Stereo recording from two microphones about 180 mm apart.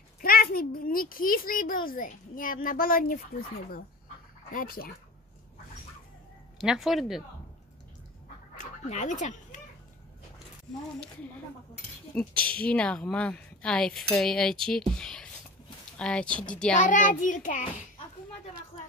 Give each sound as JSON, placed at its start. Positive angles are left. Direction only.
{"t": 0.2, "sound": "a child's voice", "side_deg": 55}
{"t": 6.6, "sound": "speech", "side_deg": 0}
{"t": 8.5, "sound": "speech", "side_deg": 40}
{"t": 12.2, "sound": "speech", "side_deg": 5}
{"t": 16.7, "sound": "a child's voice", "side_deg": 45}